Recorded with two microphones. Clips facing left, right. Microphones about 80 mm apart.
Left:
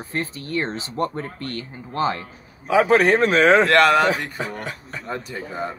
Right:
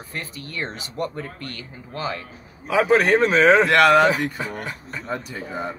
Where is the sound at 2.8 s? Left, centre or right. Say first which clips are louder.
Even; centre.